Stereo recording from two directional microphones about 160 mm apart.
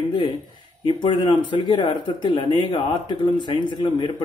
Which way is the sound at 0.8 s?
30° left (ahead or behind).